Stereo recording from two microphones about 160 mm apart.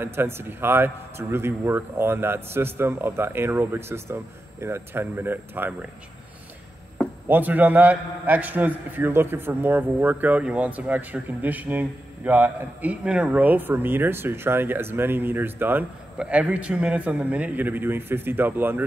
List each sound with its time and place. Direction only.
0.0 s a man's voice: 15° right (ahead or behind)
7.2 s a man's voice: 10° right (ahead or behind)